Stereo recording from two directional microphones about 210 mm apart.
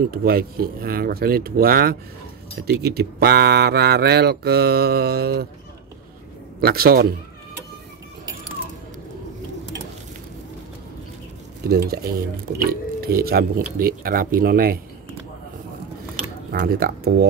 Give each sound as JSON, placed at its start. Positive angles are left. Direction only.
{"t": 0.1, "sound": "speech", "side_deg": -45}
{"t": 6.6, "sound": "speech", "side_deg": -45}
{"t": 11.7, "sound": "speech", "side_deg": -45}
{"t": 16.5, "sound": "speech", "side_deg": -45}